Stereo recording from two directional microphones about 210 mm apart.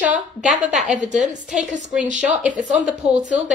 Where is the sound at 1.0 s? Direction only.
35° right (ahead or behind).